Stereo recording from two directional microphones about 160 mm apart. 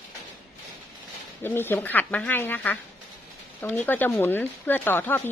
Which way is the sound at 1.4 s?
15° left (ahead or behind).